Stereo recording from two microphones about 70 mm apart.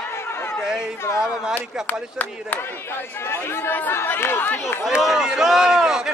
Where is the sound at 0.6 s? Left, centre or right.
Centre.